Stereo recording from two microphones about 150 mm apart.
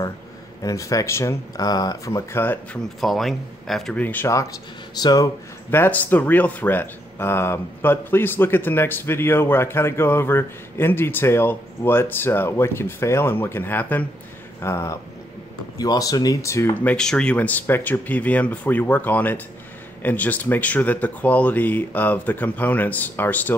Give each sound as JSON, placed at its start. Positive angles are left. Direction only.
{"t": 0.6, "sound": "speech", "side_deg": 20}
{"t": 3.0, "sound": "speech", "side_deg": 0}
{"t": 5.7, "sound": "speech", "side_deg": 10}
{"t": 16.9, "sound": "speech", "side_deg": 5}